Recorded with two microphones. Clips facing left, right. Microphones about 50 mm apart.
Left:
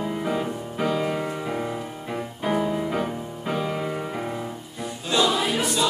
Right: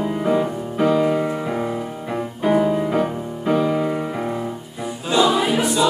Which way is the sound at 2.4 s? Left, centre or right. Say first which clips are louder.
Right 7 dB; centre.